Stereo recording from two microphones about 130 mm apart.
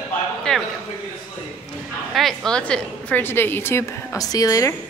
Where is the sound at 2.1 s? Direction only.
Centre (ahead or behind); by 4.7 s 25° left (ahead or behind).